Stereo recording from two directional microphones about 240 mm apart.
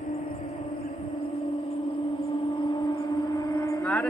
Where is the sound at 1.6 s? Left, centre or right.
Left.